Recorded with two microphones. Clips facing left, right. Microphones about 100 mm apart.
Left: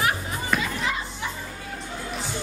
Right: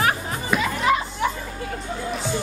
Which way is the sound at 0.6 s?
70° right (ahead or behind).